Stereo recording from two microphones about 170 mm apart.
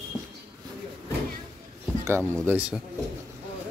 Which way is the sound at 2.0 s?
15° right (ahead or behind).